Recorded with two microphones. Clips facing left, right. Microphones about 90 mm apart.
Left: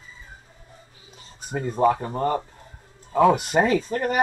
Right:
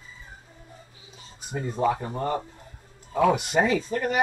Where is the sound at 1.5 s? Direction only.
45° left (ahead or behind).